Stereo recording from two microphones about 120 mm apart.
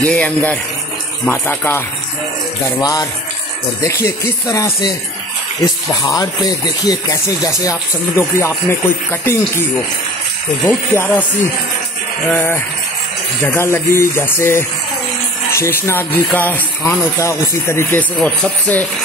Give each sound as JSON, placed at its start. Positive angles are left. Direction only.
{"t": 0.0, "sound": "speech", "side_deg": 10}
{"t": 2.8, "sound": "speech", "side_deg": 30}
{"t": 6.0, "sound": "speech", "side_deg": 30}
{"t": 12.3, "sound": "speech", "side_deg": 15}